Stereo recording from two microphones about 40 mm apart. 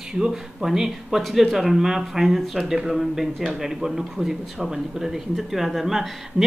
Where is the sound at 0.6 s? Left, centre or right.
Centre.